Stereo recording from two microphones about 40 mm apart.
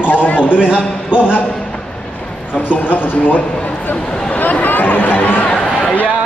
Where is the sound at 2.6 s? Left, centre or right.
Left.